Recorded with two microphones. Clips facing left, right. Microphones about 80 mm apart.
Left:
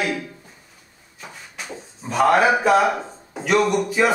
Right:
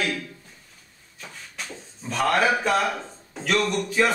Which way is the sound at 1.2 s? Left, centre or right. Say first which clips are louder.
Left 2 dB; centre.